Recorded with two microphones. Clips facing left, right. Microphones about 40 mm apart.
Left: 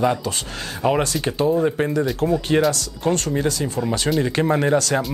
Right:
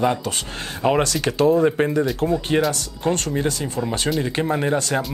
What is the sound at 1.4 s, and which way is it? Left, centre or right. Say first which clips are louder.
Speech: right 3 dB; right.